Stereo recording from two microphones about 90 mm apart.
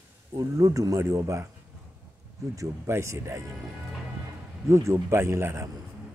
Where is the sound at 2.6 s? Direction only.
30° right (ahead or behind).